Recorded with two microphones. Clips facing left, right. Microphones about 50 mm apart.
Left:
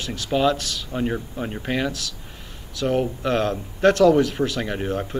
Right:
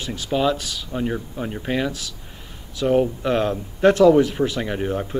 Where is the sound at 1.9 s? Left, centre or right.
Right.